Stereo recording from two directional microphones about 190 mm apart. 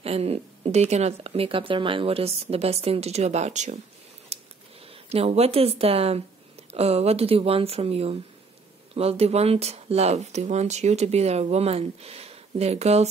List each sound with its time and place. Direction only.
0.0 s speech: 30° right (ahead or behind)
4.3 s a sound: 35° right (ahead or behind)
4.8 s speech: 30° right (ahead or behind)